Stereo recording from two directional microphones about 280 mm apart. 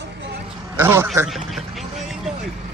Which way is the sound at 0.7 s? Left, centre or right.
Centre.